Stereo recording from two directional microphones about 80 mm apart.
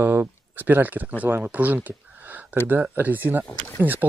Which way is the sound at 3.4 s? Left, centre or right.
Left.